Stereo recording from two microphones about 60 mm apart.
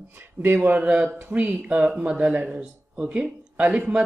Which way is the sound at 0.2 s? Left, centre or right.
Right.